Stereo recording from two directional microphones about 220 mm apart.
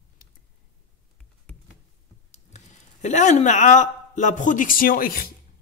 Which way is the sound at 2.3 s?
30° left (ahead or behind).